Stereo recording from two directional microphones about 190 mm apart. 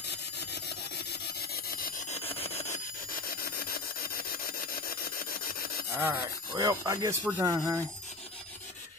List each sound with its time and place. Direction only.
0.1 s sawing: 60° left (ahead or behind)
2.0 s rub: 30° left (ahead or behind)
3.1 s sawing: 50° left (ahead or behind)
5.9 s speech: 15° right (ahead or behind)